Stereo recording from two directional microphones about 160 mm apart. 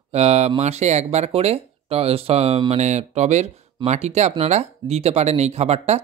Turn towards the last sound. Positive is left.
turn(degrees=-40)  # may be behind; listen again after turning